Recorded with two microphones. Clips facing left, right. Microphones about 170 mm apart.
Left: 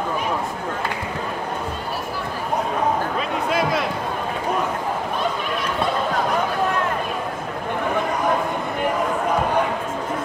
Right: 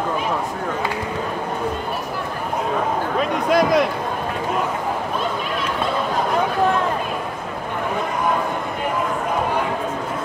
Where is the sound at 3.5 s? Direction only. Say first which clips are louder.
Right 6 dB; 40° right (ahead or behind).